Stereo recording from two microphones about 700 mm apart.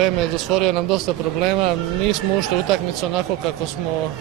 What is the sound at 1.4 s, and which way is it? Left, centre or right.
Speech, right.